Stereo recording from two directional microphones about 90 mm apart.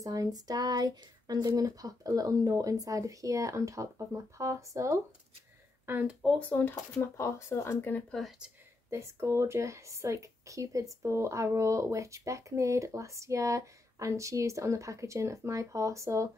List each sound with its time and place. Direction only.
0.0 s speech: 40° right (ahead or behind)
6.3 s speech: 20° left (ahead or behind)
8.1 s speech: centre (ahead or behind)
8.9 s speech: 30° right (ahead or behind)